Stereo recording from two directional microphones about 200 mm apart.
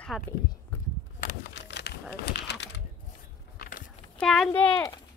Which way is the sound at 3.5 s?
50° left (ahead or behind).